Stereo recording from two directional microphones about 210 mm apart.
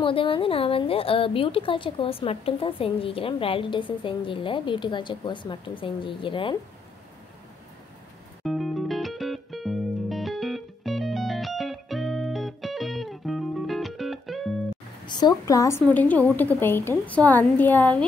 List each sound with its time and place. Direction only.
0.0 s a woman's voice: 25° left (ahead or behind)
8.5 s music: centre (ahead or behind)
15.0 s a woman's voice: 20° left (ahead or behind)